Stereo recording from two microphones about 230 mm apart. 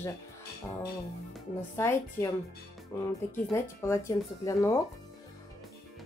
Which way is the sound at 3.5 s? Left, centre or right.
Centre.